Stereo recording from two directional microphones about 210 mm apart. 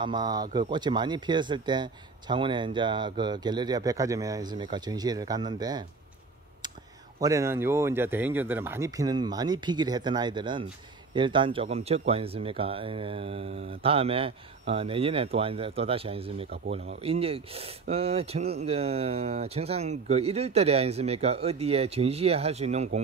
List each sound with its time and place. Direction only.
0.0 s speech: 20° right (ahead or behind)
7.2 s speech: 15° right (ahead or behind); by 22.8 s 30° right (ahead or behind)